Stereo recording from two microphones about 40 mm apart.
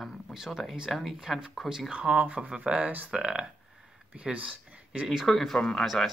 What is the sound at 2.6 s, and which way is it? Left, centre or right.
Speech, right.